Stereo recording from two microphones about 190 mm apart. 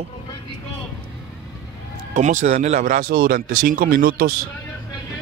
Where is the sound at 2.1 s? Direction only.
40° right (ahead or behind).